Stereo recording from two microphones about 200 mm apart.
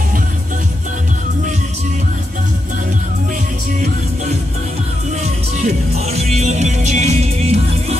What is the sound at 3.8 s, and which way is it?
Music, 35° right (ahead or behind).